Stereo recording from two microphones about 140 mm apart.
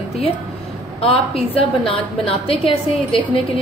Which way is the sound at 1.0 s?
45° left (ahead or behind).